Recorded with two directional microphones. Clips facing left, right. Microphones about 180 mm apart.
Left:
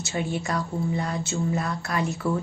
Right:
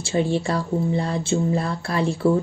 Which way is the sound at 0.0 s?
30° right (ahead or behind).